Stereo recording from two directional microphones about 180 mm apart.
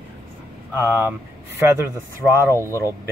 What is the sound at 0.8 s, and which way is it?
Speech, 15° right (ahead or behind).